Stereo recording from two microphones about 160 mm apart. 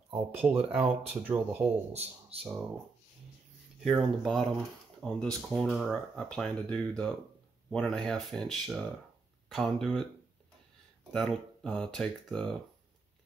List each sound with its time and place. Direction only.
0.3 s speech: 15° right (ahead or behind)
1.9 s speech: 40° right (ahead or behind)
2.4 s speech: 5° right (ahead or behind)
3.8 s speech: centre (ahead or behind)
11.1 s speech: centre (ahead or behind)